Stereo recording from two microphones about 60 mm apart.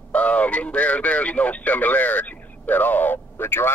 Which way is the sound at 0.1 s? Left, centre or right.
Left.